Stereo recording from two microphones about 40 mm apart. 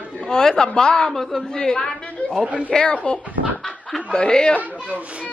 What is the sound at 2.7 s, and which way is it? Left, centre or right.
Speech, left.